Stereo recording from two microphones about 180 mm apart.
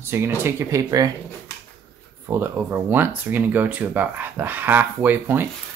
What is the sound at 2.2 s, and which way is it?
Speech, 15° right (ahead or behind).